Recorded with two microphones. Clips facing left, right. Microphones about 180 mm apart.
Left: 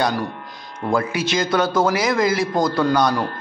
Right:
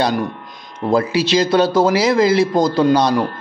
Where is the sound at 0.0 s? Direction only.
20° right (ahead or behind).